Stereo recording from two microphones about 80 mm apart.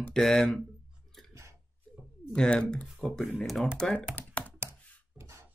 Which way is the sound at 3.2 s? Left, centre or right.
Centre.